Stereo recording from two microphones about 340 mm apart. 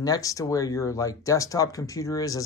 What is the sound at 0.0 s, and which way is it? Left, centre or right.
Speech, centre.